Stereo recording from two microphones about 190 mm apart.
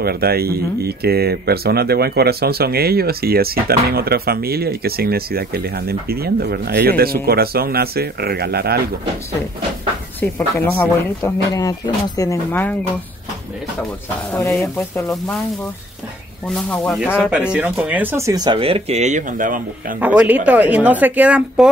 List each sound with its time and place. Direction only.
0.0 s speech: 55° right (ahead or behind)
10.2 s speech: 10° left (ahead or behind)
14.3 s speech: 10° left (ahead or behind)
16.4 s speech: 5° left (ahead or behind); by 20.0 s 45° right (ahead or behind)
20.0 s speech: 10° right (ahead or behind)